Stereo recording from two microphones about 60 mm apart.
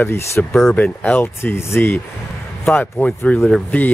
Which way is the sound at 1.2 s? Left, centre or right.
Left.